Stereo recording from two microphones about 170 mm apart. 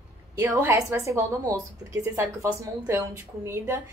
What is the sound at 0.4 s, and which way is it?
A woman's voice, 10° right (ahead or behind).